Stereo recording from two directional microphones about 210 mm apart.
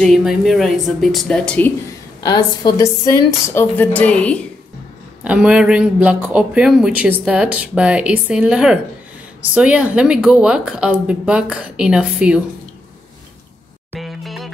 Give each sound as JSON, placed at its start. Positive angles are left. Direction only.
{"t": 0.0, "sound": "speech", "side_deg": 0}
{"t": 2.2, "sound": "a woman's voice", "side_deg": 20}
{"t": 5.2, "sound": "speech", "side_deg": -5}
{"t": 13.9, "sound": "music", "side_deg": 0}